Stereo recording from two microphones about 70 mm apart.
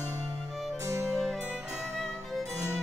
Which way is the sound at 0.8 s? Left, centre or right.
Right.